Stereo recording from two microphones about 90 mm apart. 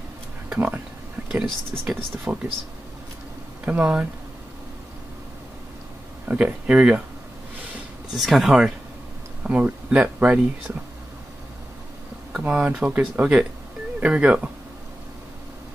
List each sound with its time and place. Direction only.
0.5 s speech: 15° right (ahead or behind)
3.6 s speech: 15° right (ahead or behind)
6.2 s speech: 15° right (ahead or behind)
8.1 s speech: centre (ahead or behind)
12.3 s speech: 10° right (ahead or behind)